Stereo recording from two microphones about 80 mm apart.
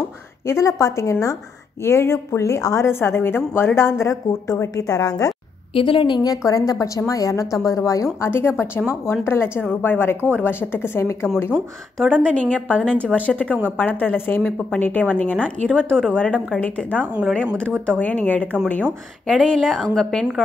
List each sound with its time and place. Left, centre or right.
0.5 s speech: left
5.9 s a woman's voice: left
6.3 s a woman's voice: left
8.3 s a woman's voice: left
12.1 s a woman's voice: centre
14.4 s a woman's voice: centre
19.2 s a woman's voice: centre